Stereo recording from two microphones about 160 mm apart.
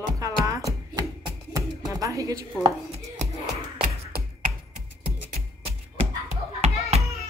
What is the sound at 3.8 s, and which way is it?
Tap, 55° right (ahead or behind).